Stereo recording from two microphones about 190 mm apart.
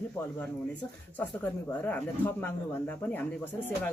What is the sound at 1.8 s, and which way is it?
Speech, 10° left (ahead or behind).